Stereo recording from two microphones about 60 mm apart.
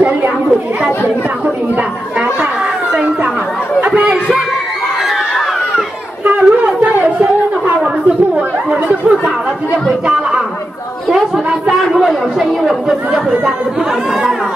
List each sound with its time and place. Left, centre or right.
3.8 s chatter: right
6.2 s wind instrument: right
11.1 s chatter: centre